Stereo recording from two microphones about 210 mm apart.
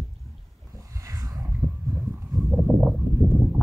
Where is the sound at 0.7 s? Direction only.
15° right (ahead or behind).